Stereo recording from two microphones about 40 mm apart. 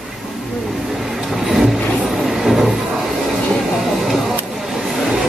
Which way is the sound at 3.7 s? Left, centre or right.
Centre.